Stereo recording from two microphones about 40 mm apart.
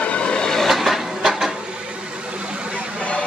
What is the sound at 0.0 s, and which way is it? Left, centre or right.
Vehicle, left.